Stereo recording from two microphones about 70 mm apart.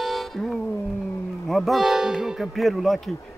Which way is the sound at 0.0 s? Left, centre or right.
Centre.